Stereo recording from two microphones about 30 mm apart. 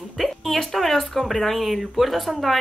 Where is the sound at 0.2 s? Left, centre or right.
Centre.